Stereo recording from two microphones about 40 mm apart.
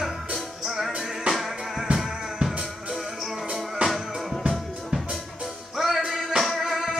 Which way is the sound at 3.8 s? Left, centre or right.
Right.